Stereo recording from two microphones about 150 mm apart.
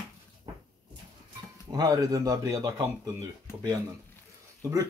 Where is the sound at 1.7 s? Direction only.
25° right (ahead or behind).